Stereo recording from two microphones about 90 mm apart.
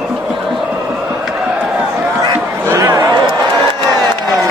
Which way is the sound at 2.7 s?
40° right (ahead or behind).